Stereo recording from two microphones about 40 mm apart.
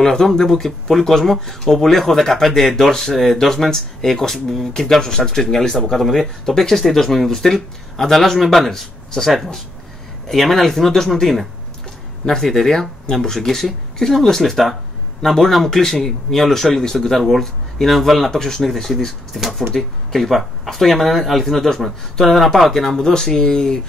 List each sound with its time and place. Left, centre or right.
0.0 s speech: centre